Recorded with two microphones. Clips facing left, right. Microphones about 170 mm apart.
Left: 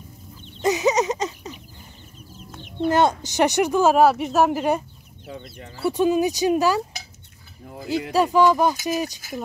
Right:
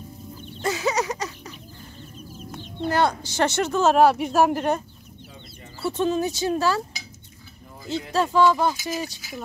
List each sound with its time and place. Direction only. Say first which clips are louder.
0.6 s a sound: left 5 dB; 20° left (ahead or behind)
2.6 s speech: left 3 dB; 20° left (ahead or behind)
8.1 s speech: left 2 dB; 15° left (ahead or behind)